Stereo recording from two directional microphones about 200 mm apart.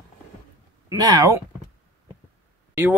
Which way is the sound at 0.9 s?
20° right (ahead or behind).